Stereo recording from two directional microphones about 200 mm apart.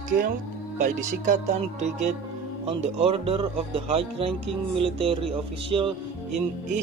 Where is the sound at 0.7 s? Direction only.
40° right (ahead or behind).